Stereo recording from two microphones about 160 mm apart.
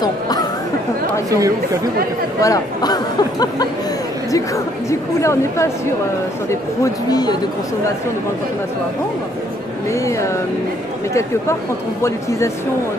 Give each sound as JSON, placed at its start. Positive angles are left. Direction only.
{"t": 0.0, "sound": "chatter", "side_deg": 25}
{"t": 2.4, "sound": "speech", "side_deg": 25}
{"t": 5.2, "sound": "a woman's voice", "side_deg": 15}
{"t": 6.8, "sound": "speech", "side_deg": 25}
{"t": 12.0, "sound": "speech", "side_deg": 20}